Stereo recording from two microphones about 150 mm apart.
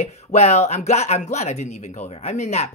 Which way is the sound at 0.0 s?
45° left (ahead or behind).